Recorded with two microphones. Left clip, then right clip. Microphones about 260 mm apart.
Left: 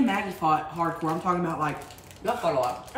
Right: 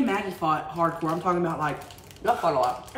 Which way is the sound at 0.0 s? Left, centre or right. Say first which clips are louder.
Left 1 dB; centre.